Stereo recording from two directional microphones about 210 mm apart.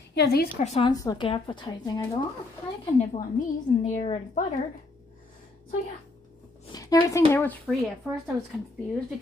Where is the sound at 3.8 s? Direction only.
35° left (ahead or behind).